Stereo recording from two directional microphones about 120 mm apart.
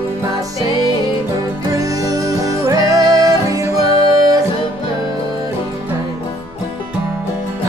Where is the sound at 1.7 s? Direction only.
30° right (ahead or behind).